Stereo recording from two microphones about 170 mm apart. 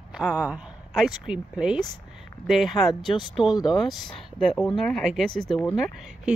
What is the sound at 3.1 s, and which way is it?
Speech, 30° left (ahead or behind).